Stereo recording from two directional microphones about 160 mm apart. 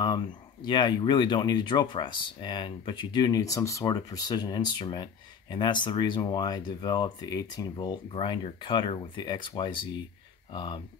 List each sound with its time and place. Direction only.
0.7 s speech: 30° left (ahead or behind)